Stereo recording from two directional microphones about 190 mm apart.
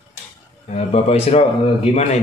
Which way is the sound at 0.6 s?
35° left (ahead or behind).